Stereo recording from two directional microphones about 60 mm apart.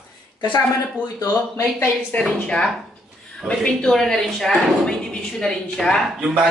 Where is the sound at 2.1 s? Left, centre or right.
Centre.